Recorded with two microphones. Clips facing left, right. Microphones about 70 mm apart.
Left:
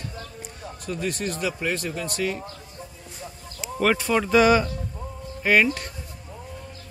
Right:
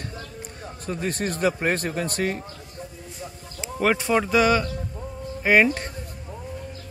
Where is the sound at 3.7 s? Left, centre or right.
Centre.